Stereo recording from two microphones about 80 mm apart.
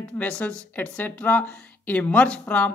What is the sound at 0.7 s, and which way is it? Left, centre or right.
Speech, left.